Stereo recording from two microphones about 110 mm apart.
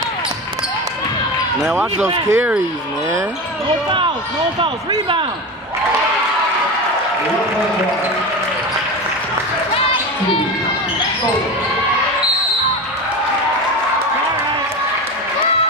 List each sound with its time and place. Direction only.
2.0 s speech: 20° right (ahead or behind)